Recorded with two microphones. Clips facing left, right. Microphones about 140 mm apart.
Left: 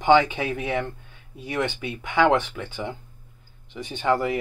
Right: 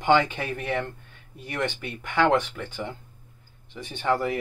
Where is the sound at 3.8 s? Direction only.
20° left (ahead or behind).